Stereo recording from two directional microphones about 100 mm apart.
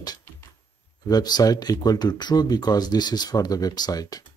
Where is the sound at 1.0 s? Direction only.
40° left (ahead or behind).